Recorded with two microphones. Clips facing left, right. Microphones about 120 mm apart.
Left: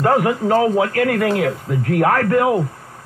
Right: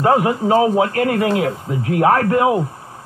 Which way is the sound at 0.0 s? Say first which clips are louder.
Right 1 dB; 25° right (ahead or behind).